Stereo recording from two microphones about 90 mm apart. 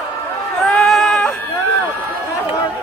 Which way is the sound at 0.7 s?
10° left (ahead or behind).